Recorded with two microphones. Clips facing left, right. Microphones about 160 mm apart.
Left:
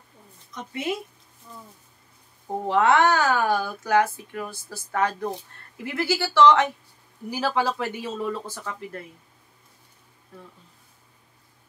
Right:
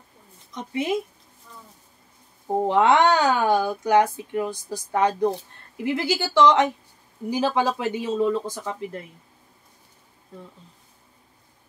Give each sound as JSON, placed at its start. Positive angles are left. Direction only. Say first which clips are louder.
{"t": 2.4, "sound": "speech", "louder": "right 2 dB", "side_deg": -20}